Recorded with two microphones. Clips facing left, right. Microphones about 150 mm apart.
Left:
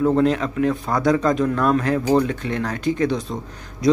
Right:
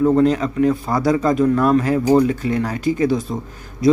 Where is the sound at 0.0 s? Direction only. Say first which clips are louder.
Right 3 dB; centre (ahead or behind).